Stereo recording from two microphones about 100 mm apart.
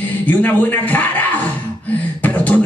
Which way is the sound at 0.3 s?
20° left (ahead or behind).